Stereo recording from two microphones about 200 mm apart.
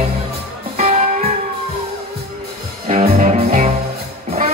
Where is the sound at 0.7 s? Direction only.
35° right (ahead or behind).